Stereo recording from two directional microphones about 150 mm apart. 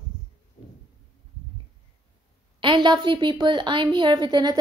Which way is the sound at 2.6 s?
35° right (ahead or behind).